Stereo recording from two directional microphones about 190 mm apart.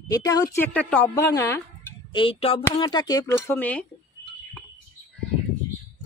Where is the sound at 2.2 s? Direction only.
30° left (ahead or behind).